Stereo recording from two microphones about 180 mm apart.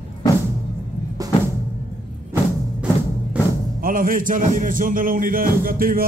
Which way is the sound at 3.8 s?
50° right (ahead or behind).